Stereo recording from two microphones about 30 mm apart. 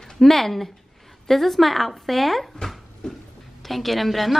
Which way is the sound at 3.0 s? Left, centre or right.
Left.